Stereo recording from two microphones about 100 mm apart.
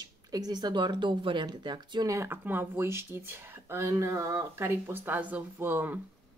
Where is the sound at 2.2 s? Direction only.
20° right (ahead or behind).